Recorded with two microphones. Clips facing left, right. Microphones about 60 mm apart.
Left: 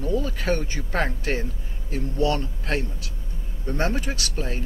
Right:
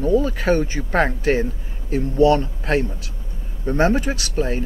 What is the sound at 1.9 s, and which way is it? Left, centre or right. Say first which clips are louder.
Speech: right 9 dB; centre.